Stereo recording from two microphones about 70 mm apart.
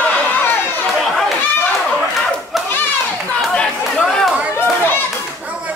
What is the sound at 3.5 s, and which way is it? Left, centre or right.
Chatter, centre.